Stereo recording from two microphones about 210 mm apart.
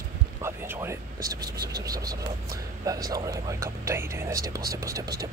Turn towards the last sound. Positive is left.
turn(degrees=-15)  # may be behind; listen again after turning